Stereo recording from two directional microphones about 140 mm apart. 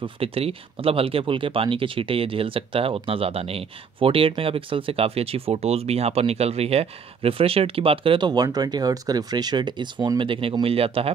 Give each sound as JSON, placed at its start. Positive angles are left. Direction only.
{"t": 0.0, "sound": "speech", "side_deg": -40}